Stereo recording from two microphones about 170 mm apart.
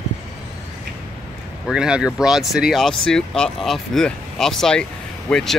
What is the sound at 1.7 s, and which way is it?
Speech, 5° right (ahead or behind).